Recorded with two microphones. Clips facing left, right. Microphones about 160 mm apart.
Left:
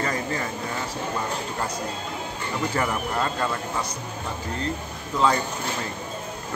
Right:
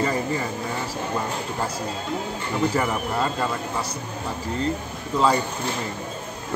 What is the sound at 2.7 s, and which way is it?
Speech, 5° right (ahead or behind).